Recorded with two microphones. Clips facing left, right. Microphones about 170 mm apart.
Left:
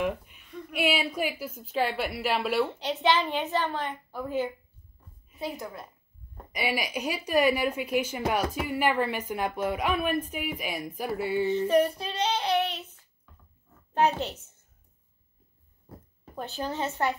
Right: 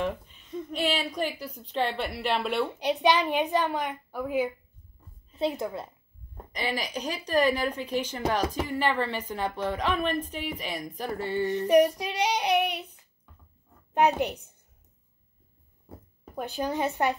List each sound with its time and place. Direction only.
0.0 s a sound: 10° left (ahead or behind)
0.5 s a sound: 20° right (ahead or behind)
0.7 s a woman's voice: 10° left (ahead or behind)
2.8 s a woman's voice: 15° right (ahead or behind)
5.4 s a woman's voice: 25° right (ahead or behind)
6.5 s a woman's voice: 10° left (ahead or behind)
11.5 s a woman's voice: 15° right (ahead or behind)
13.9 s a woman's voice: 15° right (ahead or behind)
16.3 s a woman's voice: 15° right (ahead or behind)